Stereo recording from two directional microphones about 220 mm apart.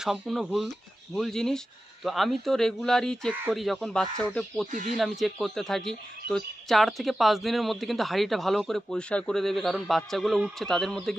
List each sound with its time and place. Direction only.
0.0 s a woman's voice: centre (ahead or behind)
4.6 s speech: 35° right (ahead or behind)
4.9 s a woman's voice: centre (ahead or behind)